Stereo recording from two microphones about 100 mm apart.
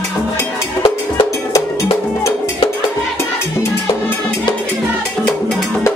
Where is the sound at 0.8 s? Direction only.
35° left (ahead or behind).